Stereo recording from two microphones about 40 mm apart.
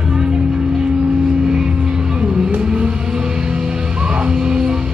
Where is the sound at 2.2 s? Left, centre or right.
Right.